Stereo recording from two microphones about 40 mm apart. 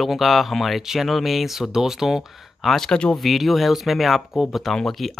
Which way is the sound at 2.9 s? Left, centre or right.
Centre.